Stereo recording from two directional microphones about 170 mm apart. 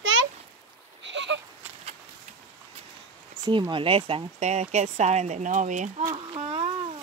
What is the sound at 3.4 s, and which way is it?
Speech, 25° right (ahead or behind).